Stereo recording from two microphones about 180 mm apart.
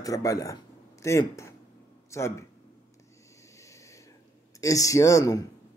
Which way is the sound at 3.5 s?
15° left (ahead or behind).